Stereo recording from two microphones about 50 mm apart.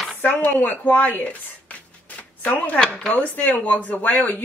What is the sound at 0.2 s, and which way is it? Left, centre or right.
Speech, left.